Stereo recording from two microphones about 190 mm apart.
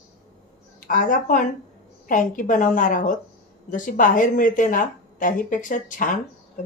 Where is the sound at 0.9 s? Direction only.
45° left (ahead or behind).